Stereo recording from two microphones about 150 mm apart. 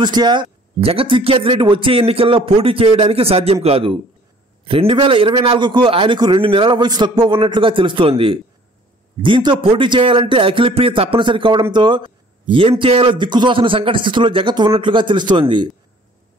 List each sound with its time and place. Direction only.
0.0 s a man's voice: 30° right (ahead or behind)